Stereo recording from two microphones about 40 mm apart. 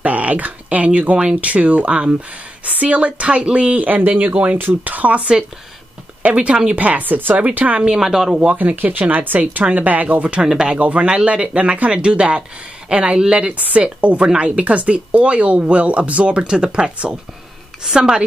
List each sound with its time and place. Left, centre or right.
0.0 s speech: right
6.2 s speech: right
7.5 s speech: right
7.9 s speech: centre
8.5 s speech: right
10.4 s speech: centre
10.7 s speech: right
17.9 s speech: right